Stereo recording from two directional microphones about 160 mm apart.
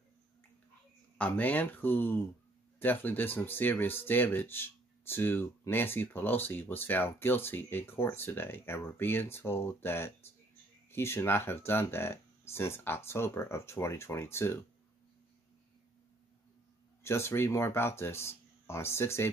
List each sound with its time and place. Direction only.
1.1 s speech: 10° left (ahead or behind)
17.0 s speech: 15° left (ahead or behind)